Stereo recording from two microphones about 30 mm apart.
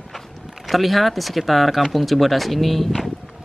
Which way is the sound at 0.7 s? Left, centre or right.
Centre.